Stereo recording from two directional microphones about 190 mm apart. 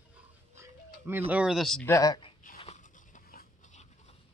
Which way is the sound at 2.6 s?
40° left (ahead or behind).